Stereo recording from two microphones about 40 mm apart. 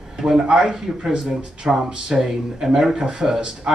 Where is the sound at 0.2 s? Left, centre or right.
Centre.